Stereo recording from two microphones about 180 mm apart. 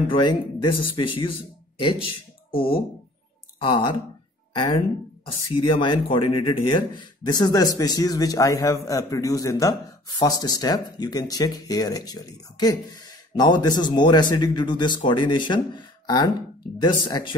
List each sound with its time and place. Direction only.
0.1 s speech: 25° left (ahead or behind)
3.5 s speech: 30° left (ahead or behind)